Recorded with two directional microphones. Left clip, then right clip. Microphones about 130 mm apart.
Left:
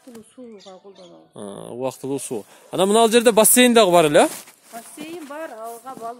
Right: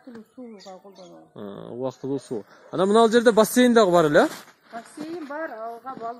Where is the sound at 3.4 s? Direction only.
85° left.